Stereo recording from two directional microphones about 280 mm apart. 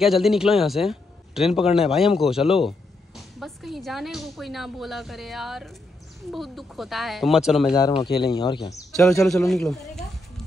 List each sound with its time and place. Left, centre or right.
0.0 s speech: centre
7.7 s speech: centre
8.9 s speech: centre